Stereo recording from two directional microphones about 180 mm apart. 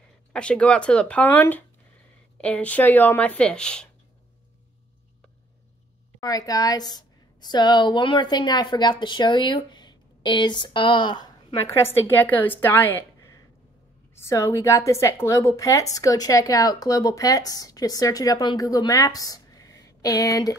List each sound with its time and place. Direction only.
0.3 s a woman's voice: 5° left (ahead or behind)
6.2 s a woman's voice: 20° left (ahead or behind)
11.6 s a woman's voice: 10° left (ahead or behind)